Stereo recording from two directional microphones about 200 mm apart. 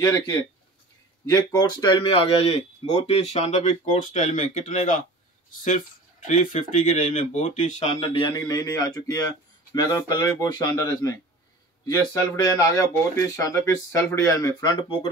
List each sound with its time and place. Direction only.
0.0 s speech: 20° left (ahead or behind); by 5.0 s 40° left (ahead or behind)
6.2 s speech: 40° left (ahead or behind); by 15.0 s 20° left (ahead or behind)